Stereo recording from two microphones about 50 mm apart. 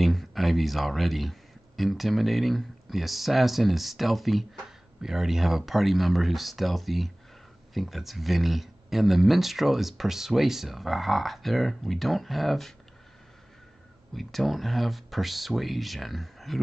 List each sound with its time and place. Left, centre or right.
0.0 s speech: centre
14.1 s speech: centre